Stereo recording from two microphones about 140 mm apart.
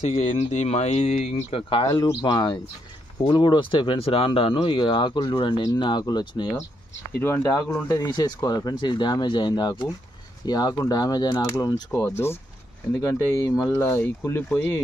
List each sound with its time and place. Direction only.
0.0 s speech: 55° left (ahead or behind)
1.7 s speech: 35° left (ahead or behind)
7.2 s speech: 15° left (ahead or behind)
7.9 s speech: 30° left (ahead or behind)
12.0 s speech: 15° left (ahead or behind)
13.7 s speech: 15° left (ahead or behind)